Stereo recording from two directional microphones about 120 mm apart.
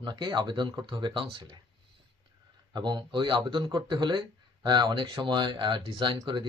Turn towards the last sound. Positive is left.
turn(degrees=-40)  # may be behind; listen again after turning